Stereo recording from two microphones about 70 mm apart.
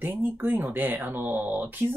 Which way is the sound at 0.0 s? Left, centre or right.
Right.